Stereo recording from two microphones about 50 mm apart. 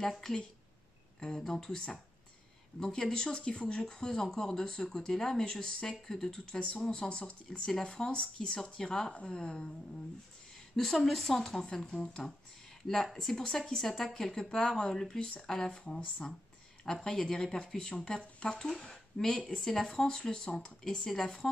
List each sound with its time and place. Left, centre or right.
0.2 s speech: centre
2.8 s speech: centre
10.8 s speech: centre
18.7 s speech: centre